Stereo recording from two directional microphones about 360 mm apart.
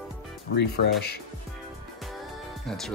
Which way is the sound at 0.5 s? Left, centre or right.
Left.